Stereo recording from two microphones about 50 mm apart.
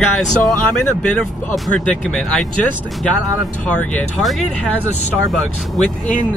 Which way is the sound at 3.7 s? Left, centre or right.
Left.